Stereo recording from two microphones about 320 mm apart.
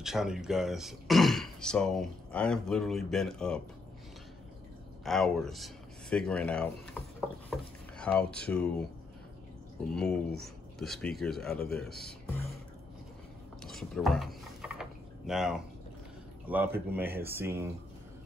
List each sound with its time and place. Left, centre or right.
0.0 s speech: centre
5.0 s speech: centre
9.9 s speech: centre
13.6 s a sound: centre
16.4 s speech: centre